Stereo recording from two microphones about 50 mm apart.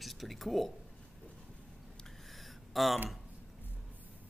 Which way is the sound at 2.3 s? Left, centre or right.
Centre.